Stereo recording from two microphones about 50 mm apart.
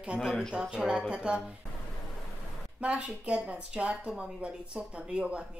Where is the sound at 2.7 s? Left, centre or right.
Right.